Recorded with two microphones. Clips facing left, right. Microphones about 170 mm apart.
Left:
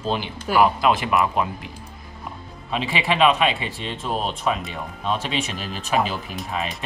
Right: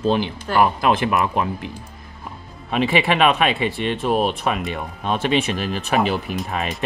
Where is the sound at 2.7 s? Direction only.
60° right (ahead or behind).